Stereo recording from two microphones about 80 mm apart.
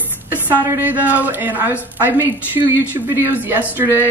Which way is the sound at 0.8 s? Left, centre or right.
Right.